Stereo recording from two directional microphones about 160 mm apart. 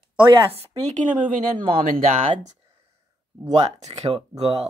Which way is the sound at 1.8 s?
55° right (ahead or behind).